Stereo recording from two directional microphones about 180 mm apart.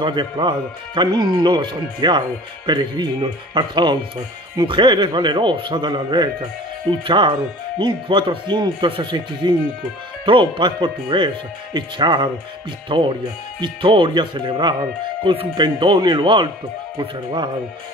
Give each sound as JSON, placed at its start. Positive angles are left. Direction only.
{"t": 0.0, "sound": "speech", "side_deg": -25}